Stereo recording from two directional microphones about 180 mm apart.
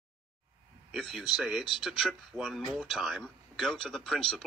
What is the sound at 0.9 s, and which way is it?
Speech, centre (ahead or behind).